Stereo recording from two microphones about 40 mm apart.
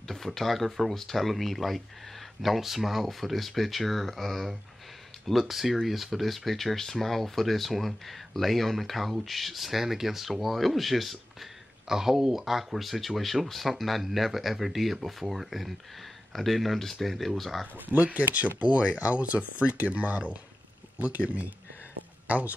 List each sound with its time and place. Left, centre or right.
0.1 s speech: centre
11.9 s speech: centre
17.8 s speech: right